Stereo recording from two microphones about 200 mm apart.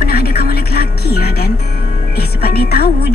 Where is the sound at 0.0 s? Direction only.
50° left (ahead or behind).